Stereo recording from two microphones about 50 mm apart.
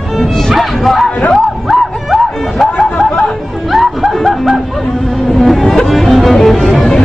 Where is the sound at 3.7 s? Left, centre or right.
Centre.